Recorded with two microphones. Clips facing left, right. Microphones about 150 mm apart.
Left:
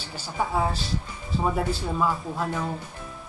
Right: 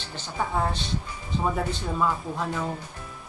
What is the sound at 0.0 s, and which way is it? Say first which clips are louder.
Speech: left 1 dB; 10° left (ahead or behind).